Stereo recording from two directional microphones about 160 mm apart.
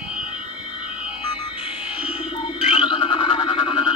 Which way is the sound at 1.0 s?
35° left (ahead or behind).